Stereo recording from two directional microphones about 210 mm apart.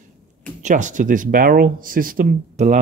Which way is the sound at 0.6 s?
35° right (ahead or behind).